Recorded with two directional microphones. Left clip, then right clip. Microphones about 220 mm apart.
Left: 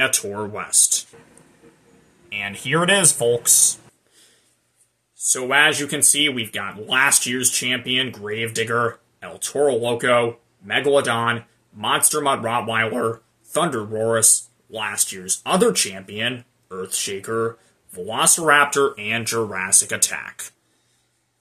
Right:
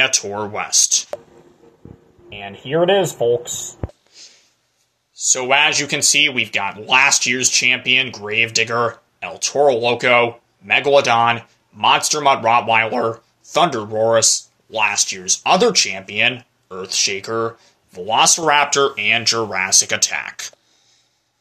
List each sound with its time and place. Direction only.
0.0 s speech: 10° left (ahead or behind)
2.4 s speech: 65° left (ahead or behind)
5.3 s speech: 10° left (ahead or behind)